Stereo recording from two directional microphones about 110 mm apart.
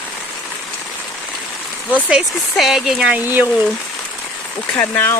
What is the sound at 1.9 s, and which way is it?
Speech, 10° right (ahead or behind).